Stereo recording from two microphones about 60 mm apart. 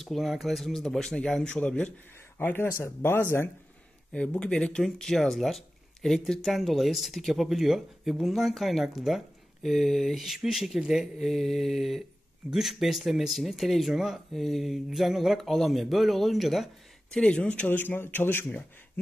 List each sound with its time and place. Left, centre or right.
0.0 s a man's voice: centre
2.3 s speech: left
4.4 s a man's voice: centre
17.1 s a man's voice: centre
17.6 s speech: left